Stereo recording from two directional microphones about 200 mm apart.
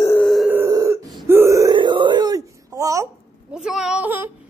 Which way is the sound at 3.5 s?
5° right (ahead or behind).